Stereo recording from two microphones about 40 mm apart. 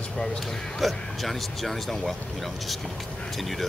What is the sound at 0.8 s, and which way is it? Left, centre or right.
Speech, centre.